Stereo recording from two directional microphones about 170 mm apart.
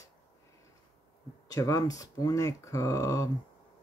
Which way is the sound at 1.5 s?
20° left (ahead or behind).